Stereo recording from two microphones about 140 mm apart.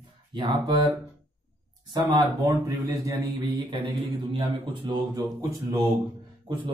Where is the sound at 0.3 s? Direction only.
35° right (ahead or behind).